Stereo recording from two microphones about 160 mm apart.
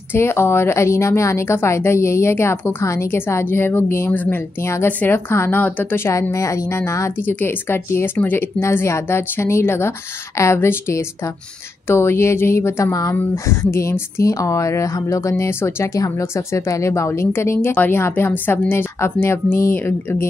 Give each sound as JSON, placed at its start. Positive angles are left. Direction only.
{"t": 0.1, "sound": "a woman's voice", "side_deg": 15}